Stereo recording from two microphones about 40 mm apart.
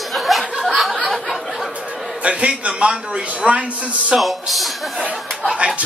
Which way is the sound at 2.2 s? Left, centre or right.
Right.